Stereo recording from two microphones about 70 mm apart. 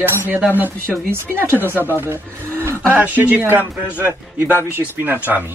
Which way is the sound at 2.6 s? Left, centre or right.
Right.